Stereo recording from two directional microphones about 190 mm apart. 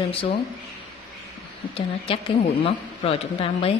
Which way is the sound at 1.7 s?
30° left (ahead or behind).